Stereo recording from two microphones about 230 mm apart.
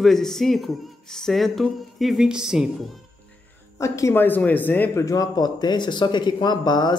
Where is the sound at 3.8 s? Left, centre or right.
Centre.